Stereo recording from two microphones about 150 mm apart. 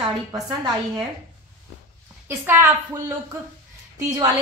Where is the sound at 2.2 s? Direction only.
15° right (ahead or behind).